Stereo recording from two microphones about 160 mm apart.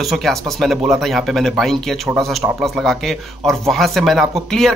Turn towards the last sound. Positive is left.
turn(degrees=0)  # may be behind; listen again after turning